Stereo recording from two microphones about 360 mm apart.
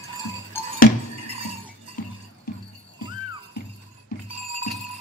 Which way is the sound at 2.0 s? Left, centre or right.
Left.